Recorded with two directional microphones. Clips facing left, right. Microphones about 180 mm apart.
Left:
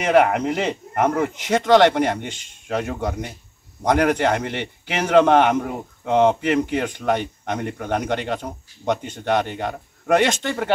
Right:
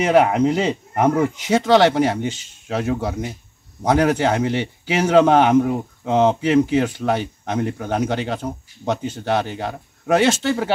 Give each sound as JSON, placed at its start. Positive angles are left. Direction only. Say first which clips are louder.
{"t": 0.0, "sound": "a man's voice", "louder": "right 2 dB", "side_deg": -5}